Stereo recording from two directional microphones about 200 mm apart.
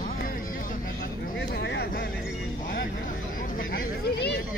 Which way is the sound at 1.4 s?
60° left (ahead or behind).